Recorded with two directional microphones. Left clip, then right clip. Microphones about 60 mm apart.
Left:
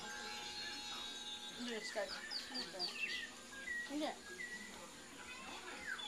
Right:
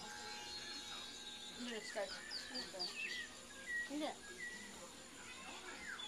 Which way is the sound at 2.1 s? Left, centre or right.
Left.